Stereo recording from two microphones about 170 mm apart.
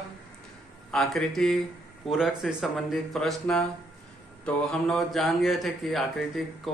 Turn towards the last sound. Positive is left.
turn(degrees=0)  # may be behind; listen again after turning